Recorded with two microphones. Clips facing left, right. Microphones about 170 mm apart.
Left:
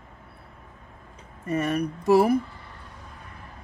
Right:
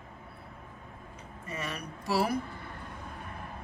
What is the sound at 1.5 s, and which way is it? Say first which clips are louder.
Speech: left 13 dB; 55° left (ahead or behind).